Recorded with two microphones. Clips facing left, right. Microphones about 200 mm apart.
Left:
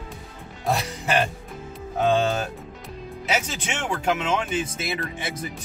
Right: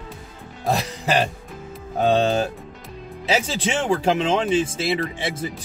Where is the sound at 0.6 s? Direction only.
35° right (ahead or behind).